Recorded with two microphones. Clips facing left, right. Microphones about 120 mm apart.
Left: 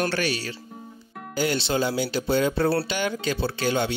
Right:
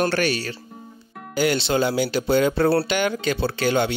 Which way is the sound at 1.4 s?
75° right (ahead or behind).